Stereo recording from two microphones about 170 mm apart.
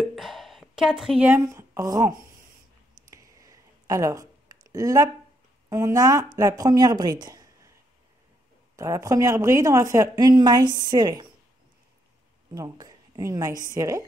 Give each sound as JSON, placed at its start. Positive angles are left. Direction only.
{"t": 0.0, "sound": "a sound", "side_deg": 0}
{"t": 5.7, "sound": "speech", "side_deg": -20}
{"t": 8.7, "sound": "a woman's voice", "side_deg": -15}
{"t": 12.5, "sound": "a woman's voice", "side_deg": -20}